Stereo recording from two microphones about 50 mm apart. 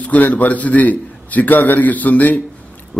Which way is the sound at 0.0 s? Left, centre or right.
Left.